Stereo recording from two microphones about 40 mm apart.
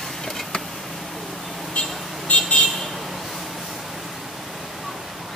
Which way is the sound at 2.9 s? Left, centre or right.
Centre.